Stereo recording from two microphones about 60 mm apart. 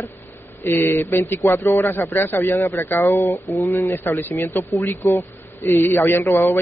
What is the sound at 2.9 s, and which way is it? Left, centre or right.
A man's voice, left.